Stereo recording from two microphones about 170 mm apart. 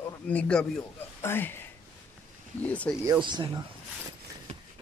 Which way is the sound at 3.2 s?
30° right (ahead or behind).